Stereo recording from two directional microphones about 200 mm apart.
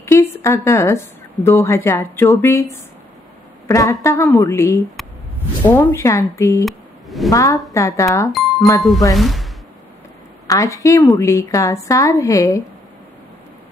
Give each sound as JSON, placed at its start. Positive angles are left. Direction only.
{"t": 0.0, "sound": "a woman's voice", "side_deg": 15}
{"t": 3.6, "sound": "a woman's voice", "side_deg": 15}
{"t": 6.6, "sound": "a sound", "side_deg": 0}
{"t": 7.2, "sound": "a woman's voice", "side_deg": 15}
{"t": 8.3, "sound": "music", "side_deg": 0}
{"t": 9.1, "sound": "speech", "side_deg": 0}
{"t": 10.4, "sound": "a woman's voice", "side_deg": 15}